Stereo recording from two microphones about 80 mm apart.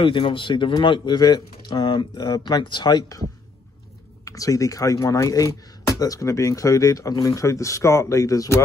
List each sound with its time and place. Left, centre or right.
0.0 s speech: left
4.2 s speech: left